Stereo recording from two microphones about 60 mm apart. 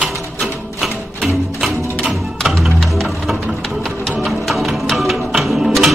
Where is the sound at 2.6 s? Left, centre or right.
Centre.